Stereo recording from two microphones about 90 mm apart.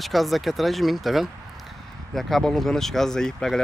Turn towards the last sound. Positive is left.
turn(degrees=5)  # may be behind; listen again after turning